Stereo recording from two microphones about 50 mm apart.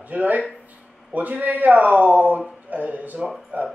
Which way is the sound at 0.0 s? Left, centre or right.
Right.